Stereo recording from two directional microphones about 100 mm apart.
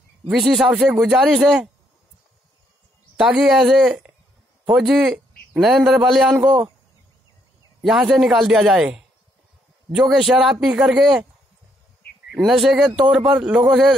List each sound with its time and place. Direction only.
0.3 s a man's voice: centre (ahead or behind)
3.2 s a man's voice: 5° right (ahead or behind)
6.4 s speech: 40° right (ahead or behind)
7.8 s a man's voice: 5° right (ahead or behind)
12.3 s a man's voice: centre (ahead or behind)